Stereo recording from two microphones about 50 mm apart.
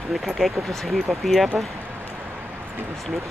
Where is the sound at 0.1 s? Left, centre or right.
Centre.